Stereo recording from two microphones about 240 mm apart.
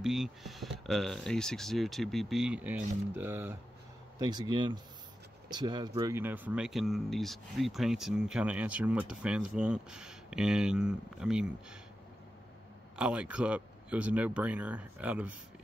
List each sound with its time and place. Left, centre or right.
0.0 s speech: centre
12.9 s speech: centre